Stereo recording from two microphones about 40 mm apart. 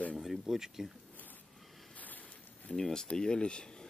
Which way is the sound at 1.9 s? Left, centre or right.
Left.